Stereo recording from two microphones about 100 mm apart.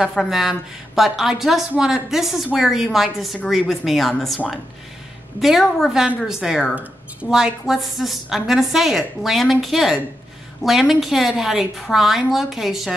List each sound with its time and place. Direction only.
0.1 s a woman's voice: centre (ahead or behind)
5.4 s a woman's voice: centre (ahead or behind)
6.7 s a woman's voice: 15° right (ahead or behind)